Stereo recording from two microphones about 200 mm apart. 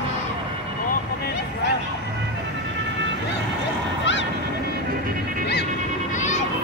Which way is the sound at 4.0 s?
65° left (ahead or behind).